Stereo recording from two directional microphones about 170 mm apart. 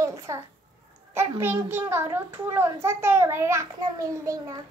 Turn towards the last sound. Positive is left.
turn(degrees=-20)  # may be behind; listen again after turning